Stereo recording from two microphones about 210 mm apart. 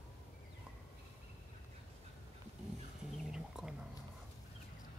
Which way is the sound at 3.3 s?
5° right (ahead or behind).